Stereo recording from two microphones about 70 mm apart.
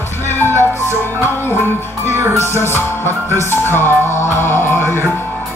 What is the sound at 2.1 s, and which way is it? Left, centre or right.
Music, right.